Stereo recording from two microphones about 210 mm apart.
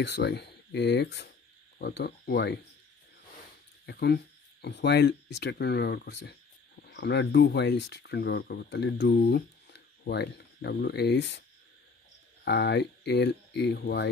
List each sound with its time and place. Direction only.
0.0 s speech: 55° left (ahead or behind)
3.8 s speech: 50° left (ahead or behind)
12.4 s speech: 55° left (ahead or behind)